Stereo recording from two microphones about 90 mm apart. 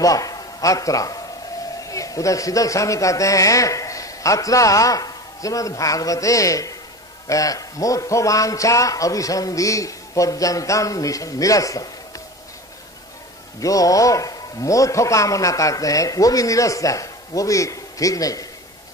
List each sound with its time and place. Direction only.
0.0 s a man's voice: 40° left (ahead or behind)
13.6 s a man's voice: 40° left (ahead or behind)